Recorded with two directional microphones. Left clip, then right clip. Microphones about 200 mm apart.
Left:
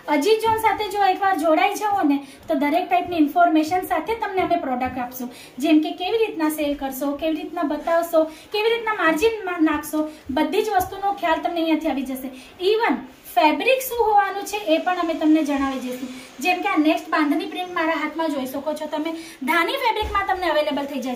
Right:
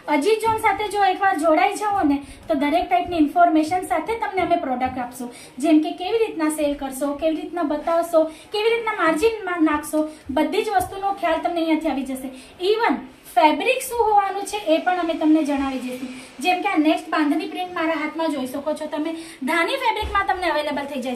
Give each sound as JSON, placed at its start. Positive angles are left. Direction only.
{"t": 0.1, "sound": "a woman's voice", "side_deg": 5}
{"t": 19.4, "sound": "a woman's voice", "side_deg": -10}